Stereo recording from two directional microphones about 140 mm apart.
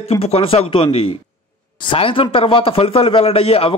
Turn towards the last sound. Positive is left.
turn(degrees=45)  # may be behind; listen again after turning